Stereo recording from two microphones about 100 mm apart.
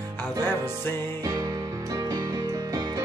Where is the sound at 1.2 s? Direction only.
35° right (ahead or behind).